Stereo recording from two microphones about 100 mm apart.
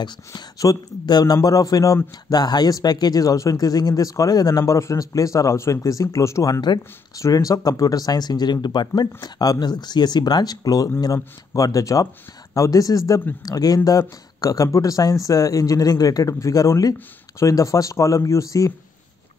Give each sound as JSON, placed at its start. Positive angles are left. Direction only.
{"t": 0.0, "sound": "speech", "side_deg": 40}